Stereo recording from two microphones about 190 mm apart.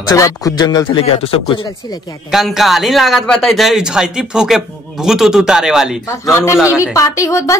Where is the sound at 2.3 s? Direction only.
Centre (ahead or behind).